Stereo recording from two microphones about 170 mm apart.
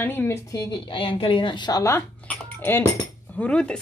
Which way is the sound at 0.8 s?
30° left (ahead or behind).